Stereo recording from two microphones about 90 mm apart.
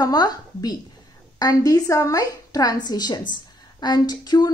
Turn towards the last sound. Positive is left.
turn(degrees=55)  # may be behind; listen again after turning